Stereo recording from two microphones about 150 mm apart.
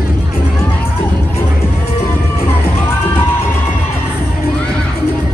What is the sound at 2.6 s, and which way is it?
Music, 15° left (ahead or behind).